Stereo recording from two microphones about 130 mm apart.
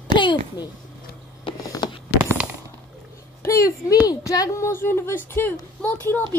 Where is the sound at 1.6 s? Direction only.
30° left (ahead or behind).